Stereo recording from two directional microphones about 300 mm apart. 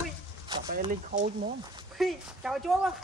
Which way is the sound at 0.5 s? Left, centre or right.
Right.